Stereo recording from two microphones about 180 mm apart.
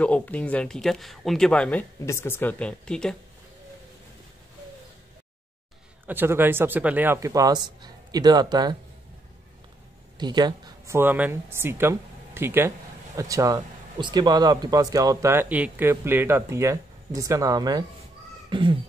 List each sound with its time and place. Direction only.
0.0 s speech: 10° left (ahead or behind)
6.0 s speech: 10° right (ahead or behind)
10.1 s speech: 25° right (ahead or behind)
18.5 s a sound: 25° right (ahead or behind)